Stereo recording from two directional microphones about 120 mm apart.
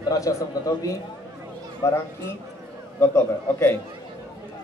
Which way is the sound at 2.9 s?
15° left (ahead or behind).